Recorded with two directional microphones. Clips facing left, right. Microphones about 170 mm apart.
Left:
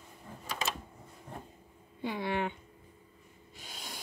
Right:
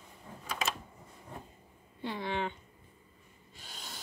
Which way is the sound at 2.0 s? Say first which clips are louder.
Left 2 dB; 10° left (ahead or behind).